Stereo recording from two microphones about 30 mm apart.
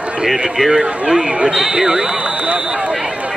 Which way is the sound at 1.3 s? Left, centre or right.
Right.